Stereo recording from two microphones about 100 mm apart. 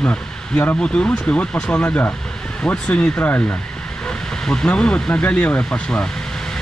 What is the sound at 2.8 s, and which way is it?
Speech, 15° left (ahead or behind).